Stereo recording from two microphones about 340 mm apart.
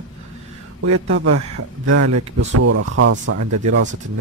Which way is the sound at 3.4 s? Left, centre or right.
Right.